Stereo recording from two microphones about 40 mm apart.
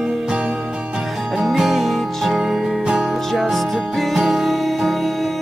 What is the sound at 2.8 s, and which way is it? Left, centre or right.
Music, right.